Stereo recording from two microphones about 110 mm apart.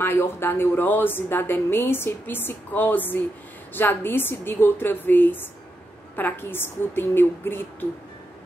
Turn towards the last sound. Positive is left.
turn(degrees=20)  # may be behind; listen again after turning